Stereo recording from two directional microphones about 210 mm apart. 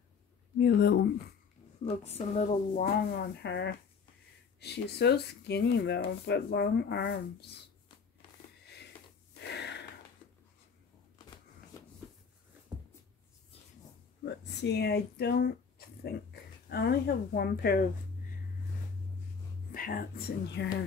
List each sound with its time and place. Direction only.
0.6 s speech: 50° left (ahead or behind)
1.9 s a woman's voice: 30° left (ahead or behind)
3.4 s speech: 55° left (ahead or behind)
9.5 s gasp: 55° left (ahead or behind)
14.2 s speech: 55° left (ahead or behind)
19.7 s speech: 45° left (ahead or behind)